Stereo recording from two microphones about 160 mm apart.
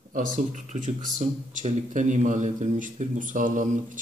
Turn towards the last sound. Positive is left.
turn(degrees=-50)  # may be behind; listen again after turning